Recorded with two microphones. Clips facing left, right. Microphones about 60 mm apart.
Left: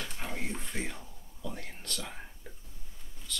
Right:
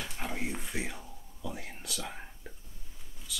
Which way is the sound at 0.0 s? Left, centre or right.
Centre.